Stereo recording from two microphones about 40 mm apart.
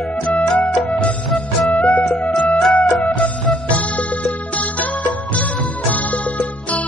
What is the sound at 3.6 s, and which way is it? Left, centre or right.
Music, left.